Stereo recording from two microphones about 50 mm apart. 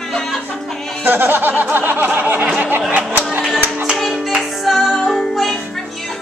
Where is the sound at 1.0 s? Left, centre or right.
Right.